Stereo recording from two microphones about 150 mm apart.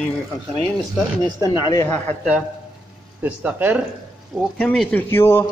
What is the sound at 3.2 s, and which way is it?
Speech, 10° right (ahead or behind).